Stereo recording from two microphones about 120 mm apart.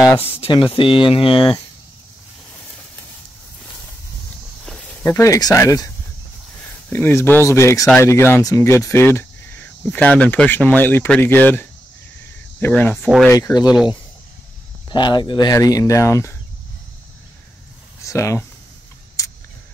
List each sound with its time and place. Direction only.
0.1 s speech: 20° left (ahead or behind)
0.4 s speech: 45° left (ahead or behind)
4.6 s snake: 5° left (ahead or behind)
5.0 s speech: 20° left (ahead or behind)
6.9 s speech: 20° left (ahead or behind)
13.3 s speech: 30° left (ahead or behind)
14.9 s speech: 40° left (ahead or behind)
18.0 s speech: 25° left (ahead or behind)
19.2 s a sound: 30° left (ahead or behind)